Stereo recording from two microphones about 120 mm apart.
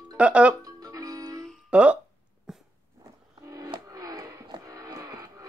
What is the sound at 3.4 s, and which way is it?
Music, 30° right (ahead or behind).